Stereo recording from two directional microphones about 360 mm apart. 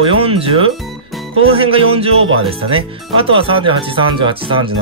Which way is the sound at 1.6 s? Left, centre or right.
Centre.